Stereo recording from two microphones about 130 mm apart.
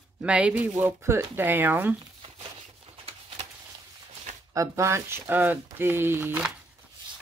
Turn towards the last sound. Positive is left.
turn(degrees=-15)  # may be behind; listen again after turning